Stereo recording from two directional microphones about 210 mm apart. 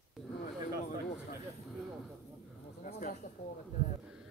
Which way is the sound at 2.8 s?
40° left (ahead or behind).